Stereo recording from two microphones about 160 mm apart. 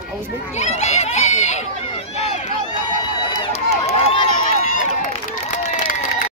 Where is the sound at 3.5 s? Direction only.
40° left (ahead or behind).